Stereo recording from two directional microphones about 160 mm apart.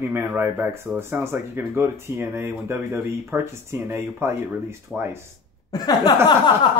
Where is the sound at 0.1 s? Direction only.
15° right (ahead or behind).